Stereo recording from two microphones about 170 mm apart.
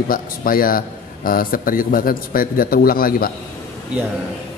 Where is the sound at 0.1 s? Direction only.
55° left (ahead or behind).